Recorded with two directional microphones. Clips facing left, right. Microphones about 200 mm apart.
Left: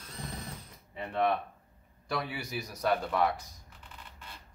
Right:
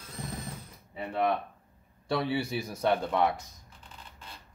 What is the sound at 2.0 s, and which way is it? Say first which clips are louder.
A man's voice: right 6 dB; 30° right (ahead or behind).